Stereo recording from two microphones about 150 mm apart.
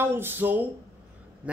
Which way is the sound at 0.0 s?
15° right (ahead or behind).